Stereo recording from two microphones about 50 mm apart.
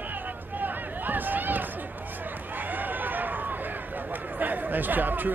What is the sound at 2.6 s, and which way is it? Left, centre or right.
Run, right.